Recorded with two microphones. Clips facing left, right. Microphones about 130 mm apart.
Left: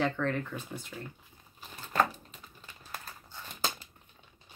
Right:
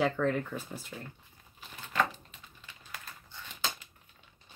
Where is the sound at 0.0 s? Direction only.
5° right (ahead or behind).